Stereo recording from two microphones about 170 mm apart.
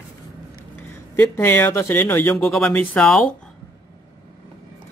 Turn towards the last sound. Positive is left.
turn(degrees=5)  # may be behind; listen again after turning